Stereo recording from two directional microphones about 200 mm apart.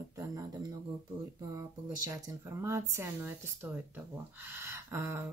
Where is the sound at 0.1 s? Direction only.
15° right (ahead or behind).